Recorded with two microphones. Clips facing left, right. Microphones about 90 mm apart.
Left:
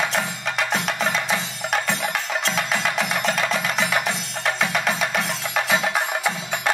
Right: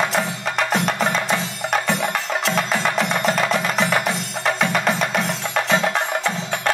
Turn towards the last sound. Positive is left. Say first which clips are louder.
# right 2 dB
turn(degrees=5)  # may be behind; listen again after turning